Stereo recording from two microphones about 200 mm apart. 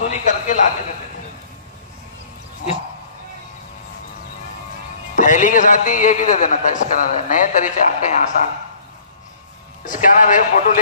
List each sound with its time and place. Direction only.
0.0 s a sound: 35° left (ahead or behind)
5.1 s a man's voice: 40° left (ahead or behind)
9.8 s a man's voice: 40° left (ahead or behind)